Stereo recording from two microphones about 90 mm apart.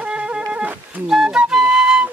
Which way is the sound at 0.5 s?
15° right (ahead or behind).